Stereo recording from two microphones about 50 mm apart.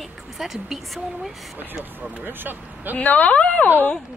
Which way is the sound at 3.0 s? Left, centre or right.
Left.